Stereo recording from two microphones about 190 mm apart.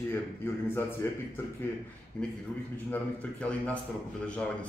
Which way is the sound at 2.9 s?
5° left (ahead or behind).